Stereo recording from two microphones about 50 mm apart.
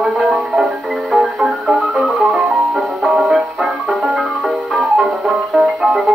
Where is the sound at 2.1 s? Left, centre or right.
Centre.